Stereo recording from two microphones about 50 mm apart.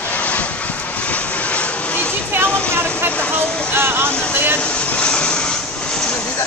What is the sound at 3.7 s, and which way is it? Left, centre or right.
Speech, right.